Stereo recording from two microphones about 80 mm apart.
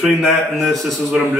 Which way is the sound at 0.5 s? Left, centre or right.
Centre.